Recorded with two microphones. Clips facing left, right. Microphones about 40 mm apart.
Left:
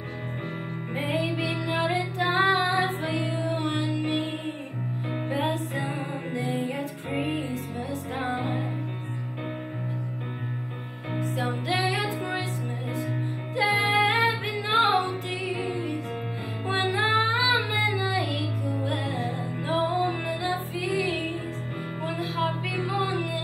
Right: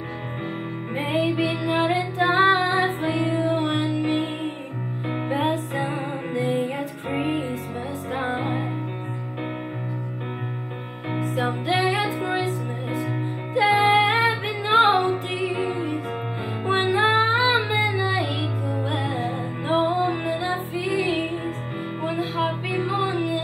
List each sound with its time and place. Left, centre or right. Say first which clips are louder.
0.9 s music: right 5 dB; right
11.1 s music: right 4 dB; right
13.6 s music: right 5 dB; right
17.3 s child singing: right 4 dB; right
17.6 s music: right 3 dB; right
22.3 s music: right 3 dB; right